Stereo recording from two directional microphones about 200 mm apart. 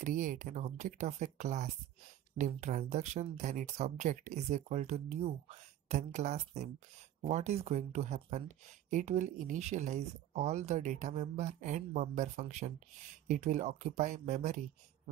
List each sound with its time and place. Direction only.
0.0 s speech: 40° right (ahead or behind)